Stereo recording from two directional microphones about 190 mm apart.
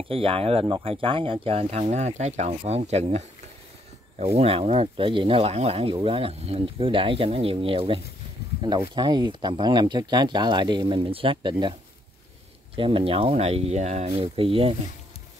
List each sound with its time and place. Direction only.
0.1 s speech: 30° right (ahead or behind)
12.7 s speech: 25° right (ahead or behind)